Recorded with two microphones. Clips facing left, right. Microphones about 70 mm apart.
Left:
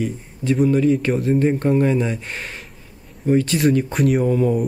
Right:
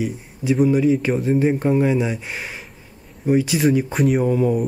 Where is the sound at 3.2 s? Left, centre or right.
Centre.